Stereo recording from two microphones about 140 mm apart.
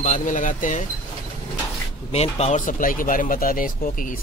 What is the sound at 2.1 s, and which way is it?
Speech, 50° left (ahead or behind).